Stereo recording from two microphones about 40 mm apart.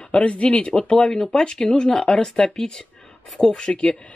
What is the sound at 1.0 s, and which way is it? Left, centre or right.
Speech, centre.